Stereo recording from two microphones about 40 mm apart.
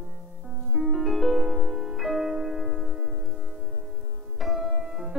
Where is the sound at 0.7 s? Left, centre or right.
Centre.